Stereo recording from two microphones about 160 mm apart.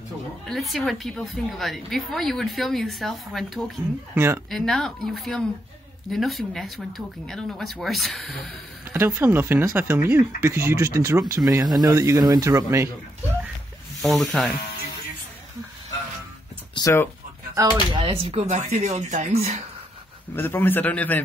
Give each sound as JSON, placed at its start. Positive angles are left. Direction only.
{"t": 0.5, "sound": "speech", "side_deg": 0}
{"t": 4.1, "sound": "speech", "side_deg": -15}
{"t": 4.5, "sound": "speech", "side_deg": 0}
{"t": 8.9, "sound": "speech", "side_deg": -15}
{"t": 14.0, "sound": "speech", "side_deg": 0}
{"t": 16.7, "sound": "speech", "side_deg": 20}
{"t": 17.6, "sound": "speech", "side_deg": -20}
{"t": 18.0, "sound": "speech", "side_deg": -35}
{"t": 20.3, "sound": "a man's voice", "side_deg": 10}